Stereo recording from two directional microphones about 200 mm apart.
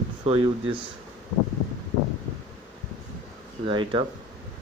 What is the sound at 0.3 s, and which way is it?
Speech, 25° right (ahead or behind).